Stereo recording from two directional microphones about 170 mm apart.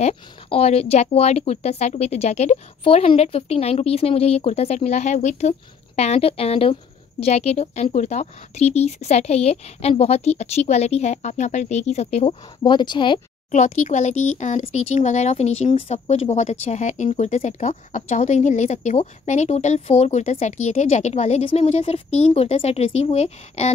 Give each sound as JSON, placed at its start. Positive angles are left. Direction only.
{"t": 0.0, "sound": "speech", "side_deg": 35}
{"t": 12.6, "sound": "speech", "side_deg": 25}
{"t": 13.5, "sound": "speech", "side_deg": 45}